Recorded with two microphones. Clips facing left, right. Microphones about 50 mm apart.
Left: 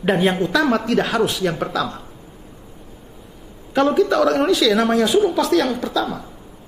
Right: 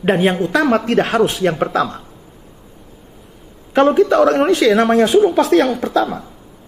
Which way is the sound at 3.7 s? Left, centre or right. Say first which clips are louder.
Right 4 dB; right.